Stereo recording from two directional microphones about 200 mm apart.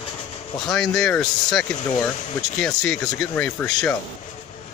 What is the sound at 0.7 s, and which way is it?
Speech, centre (ahead or behind).